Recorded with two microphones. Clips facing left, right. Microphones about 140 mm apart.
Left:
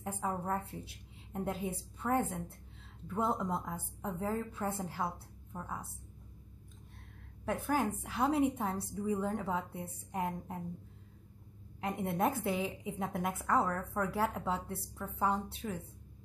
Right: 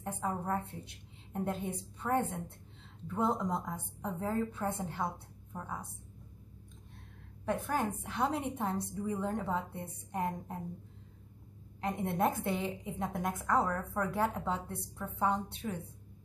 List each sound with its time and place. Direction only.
0.0 s a woman's voice: centre (ahead or behind)
7.4 s a woman's voice: 5° left (ahead or behind)
11.8 s a woman's voice: 5° left (ahead or behind)